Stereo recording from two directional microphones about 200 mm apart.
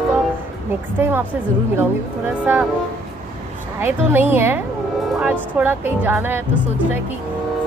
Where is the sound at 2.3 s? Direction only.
5° right (ahead or behind).